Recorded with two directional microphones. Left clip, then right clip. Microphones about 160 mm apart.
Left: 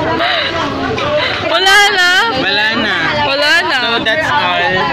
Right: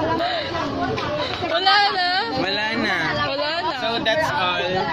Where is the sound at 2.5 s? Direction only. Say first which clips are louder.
Left 9 dB; 45° right (ahead or behind).